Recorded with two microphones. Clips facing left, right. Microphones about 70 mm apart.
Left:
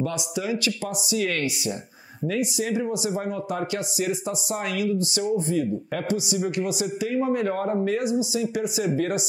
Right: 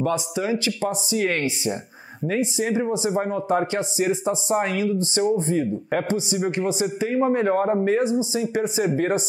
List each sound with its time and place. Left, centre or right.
0.0 s speech: right